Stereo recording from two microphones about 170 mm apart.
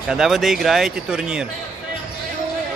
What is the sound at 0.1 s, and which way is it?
Speech, centre (ahead or behind).